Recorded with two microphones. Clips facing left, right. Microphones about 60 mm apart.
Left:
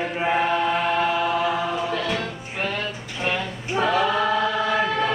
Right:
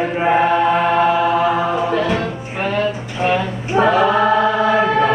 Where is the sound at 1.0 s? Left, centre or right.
Centre.